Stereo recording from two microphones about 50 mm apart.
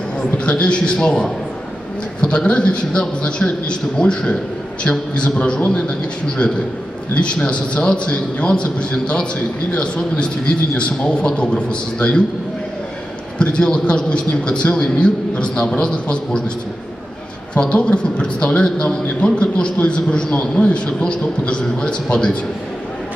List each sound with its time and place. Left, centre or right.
0.5 s a man's voice: left
13.4 s a man's voice: centre
17.6 s a man's voice: left